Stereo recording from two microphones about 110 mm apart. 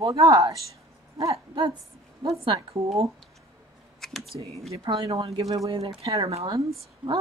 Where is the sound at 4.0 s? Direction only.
5° left (ahead or behind).